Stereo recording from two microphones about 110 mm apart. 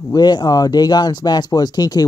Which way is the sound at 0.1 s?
40° left (ahead or behind).